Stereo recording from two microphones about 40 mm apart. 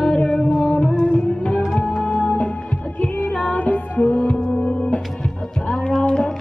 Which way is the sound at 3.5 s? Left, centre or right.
Left.